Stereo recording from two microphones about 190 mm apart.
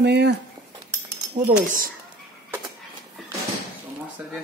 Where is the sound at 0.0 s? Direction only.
60° right (ahead or behind).